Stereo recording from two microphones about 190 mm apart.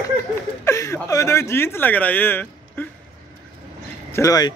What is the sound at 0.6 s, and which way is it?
Speech, 15° left (ahead or behind).